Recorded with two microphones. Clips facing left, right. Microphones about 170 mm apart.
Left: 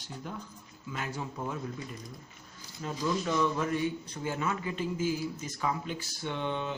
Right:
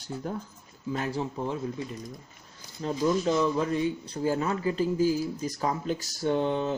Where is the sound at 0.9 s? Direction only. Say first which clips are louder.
Right 6 dB; 35° right (ahead or behind).